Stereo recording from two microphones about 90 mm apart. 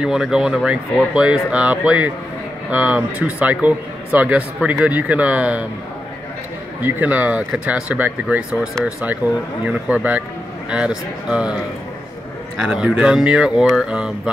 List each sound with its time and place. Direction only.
0.0 s speech: 10° right (ahead or behind)
6.8 s speech: 20° right (ahead or behind)
9.7 s speech: 15° right (ahead or behind)
12.6 s speech: 10° right (ahead or behind)